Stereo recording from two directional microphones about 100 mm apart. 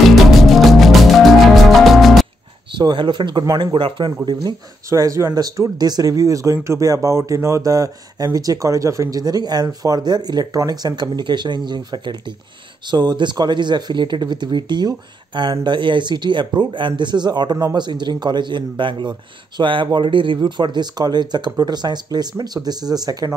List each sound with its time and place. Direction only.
0.0 s music: centre (ahead or behind)
2.8 s speech: 50° right (ahead or behind)
4.3 s speech: 45° right (ahead or behind)
4.8 s speech: 35° right (ahead or behind)
5.3 s speech: 45° right (ahead or behind)